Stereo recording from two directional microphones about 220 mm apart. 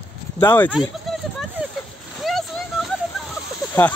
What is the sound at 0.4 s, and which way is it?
Speech, 10° left (ahead or behind).